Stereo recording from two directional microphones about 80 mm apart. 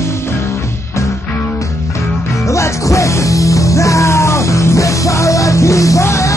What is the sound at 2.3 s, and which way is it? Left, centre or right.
Music, left.